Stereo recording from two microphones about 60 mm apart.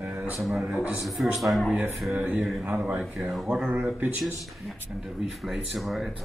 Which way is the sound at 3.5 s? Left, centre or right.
Right.